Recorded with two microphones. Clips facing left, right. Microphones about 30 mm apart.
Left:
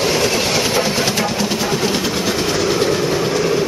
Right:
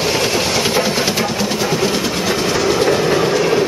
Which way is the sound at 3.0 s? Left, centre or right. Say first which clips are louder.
Right 3 dB; centre.